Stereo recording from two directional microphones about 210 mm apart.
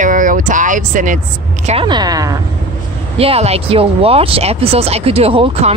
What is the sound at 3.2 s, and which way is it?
Speech, 30° right (ahead or behind).